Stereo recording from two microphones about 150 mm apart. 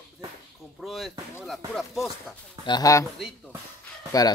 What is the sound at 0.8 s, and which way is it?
Speech, centre (ahead or behind).